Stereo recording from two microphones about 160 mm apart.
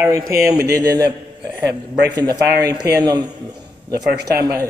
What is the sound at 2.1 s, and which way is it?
Speech, 25° right (ahead or behind).